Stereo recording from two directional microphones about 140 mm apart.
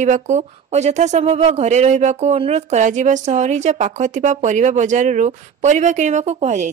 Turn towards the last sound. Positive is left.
turn(degrees=-55)  # may be behind; listen again after turning